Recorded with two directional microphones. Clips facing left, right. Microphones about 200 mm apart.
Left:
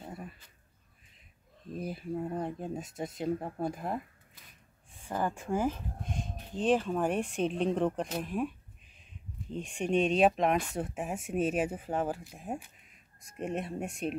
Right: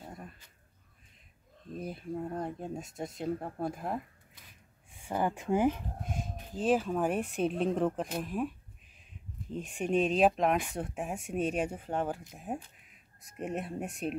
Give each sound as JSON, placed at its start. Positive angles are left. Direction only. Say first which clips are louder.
{"t": 0.0, "sound": "a sound", "louder": "left 3 dB", "side_deg": 5}
{"t": 1.7, "sound": "speech", "louder": "left 2 dB", "side_deg": 5}
{"t": 4.9, "sound": "speech", "louder": "right 1 dB", "side_deg": -15}
{"t": 6.0, "sound": "speech", "louder": "even", "side_deg": -5}